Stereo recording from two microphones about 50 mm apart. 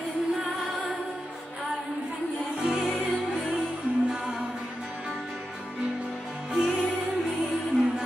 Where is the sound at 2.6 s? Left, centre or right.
Centre.